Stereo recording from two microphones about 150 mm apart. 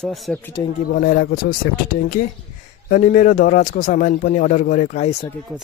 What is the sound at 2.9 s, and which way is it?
Speech, 65° left (ahead or behind).